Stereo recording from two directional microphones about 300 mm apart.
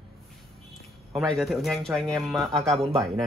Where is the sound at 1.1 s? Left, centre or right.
Centre.